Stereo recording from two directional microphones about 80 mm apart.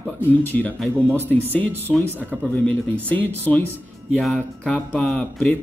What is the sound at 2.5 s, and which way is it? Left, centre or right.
Speech, centre.